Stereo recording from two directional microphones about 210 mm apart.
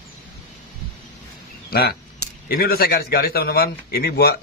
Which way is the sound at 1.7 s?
45° left (ahead or behind).